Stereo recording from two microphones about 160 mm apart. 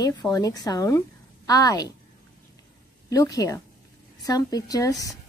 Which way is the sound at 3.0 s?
20° left (ahead or behind).